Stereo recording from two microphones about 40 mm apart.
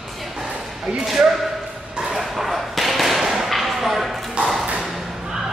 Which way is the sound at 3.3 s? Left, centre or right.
Centre.